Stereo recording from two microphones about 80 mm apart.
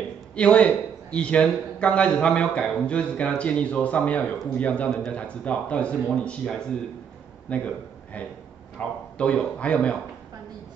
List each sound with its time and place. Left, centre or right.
0.4 s a man's voice: centre